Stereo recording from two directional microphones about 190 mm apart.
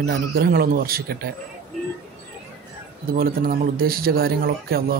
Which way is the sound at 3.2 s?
50° right (ahead or behind).